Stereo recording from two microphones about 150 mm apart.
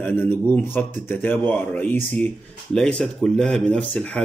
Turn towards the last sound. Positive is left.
turn(degrees=5)  # may be behind; listen again after turning